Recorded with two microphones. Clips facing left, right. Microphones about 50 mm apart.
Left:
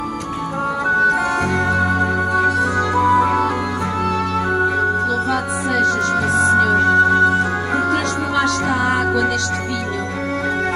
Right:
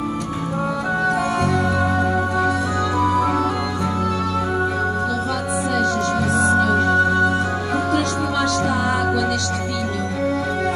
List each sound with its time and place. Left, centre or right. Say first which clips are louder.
1.0 s music: left 3 dB; left
2.9 s music: left 4 dB; left
5.3 s music: left 2 dB; left